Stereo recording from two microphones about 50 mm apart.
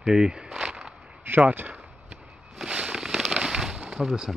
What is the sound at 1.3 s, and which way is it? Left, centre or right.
Speech, right.